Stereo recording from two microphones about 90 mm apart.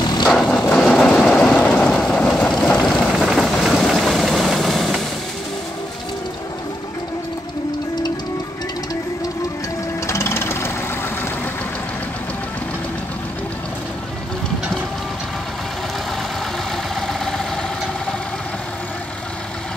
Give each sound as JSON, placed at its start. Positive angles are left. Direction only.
{"t": 0.0, "sound": "vehicle", "side_deg": 50}
{"t": 0.3, "sound": "a sound", "side_deg": 5}
{"t": 1.3, "sound": "vehicle", "side_deg": 15}
{"t": 10.0, "sound": "jackhammer", "side_deg": 35}
{"t": 16.9, "sound": "vehicle", "side_deg": 5}